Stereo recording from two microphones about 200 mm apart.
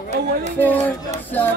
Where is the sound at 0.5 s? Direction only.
10° left (ahead or behind).